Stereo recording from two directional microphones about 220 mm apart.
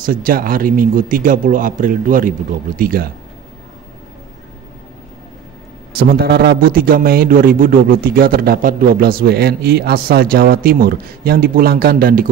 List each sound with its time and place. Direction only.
0.0 s speech: 40° right (ahead or behind)
5.9 s a man's voice: 45° right (ahead or behind)